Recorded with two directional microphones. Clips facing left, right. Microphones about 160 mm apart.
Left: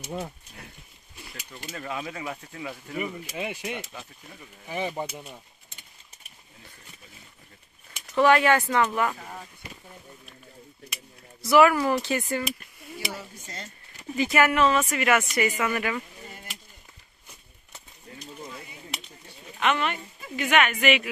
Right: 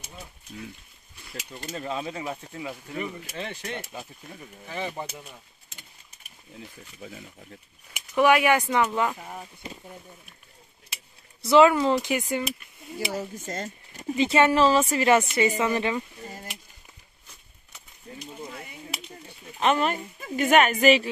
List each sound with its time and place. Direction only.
1.8 s speech: 25° right (ahead or behind)
2.9 s speech: centre (ahead or behind)
3.3 s speech: 10° left (ahead or behind)
8.2 s speech: 15° right (ahead or behind)
11.4 s speech: 25° right (ahead or behind)
13.2 s speech: 45° right (ahead or behind)
14.1 s speech: 25° right (ahead or behind)
19.6 s a woman's voice: 40° right (ahead or behind)